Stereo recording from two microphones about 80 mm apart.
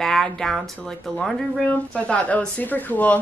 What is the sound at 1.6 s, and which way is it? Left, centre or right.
Speech, centre.